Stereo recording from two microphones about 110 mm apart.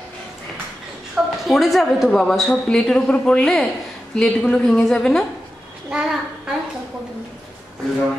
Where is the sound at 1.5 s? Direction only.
Centre (ahead or behind).